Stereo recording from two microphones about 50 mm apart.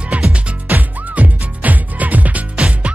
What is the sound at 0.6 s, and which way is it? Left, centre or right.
Music, right.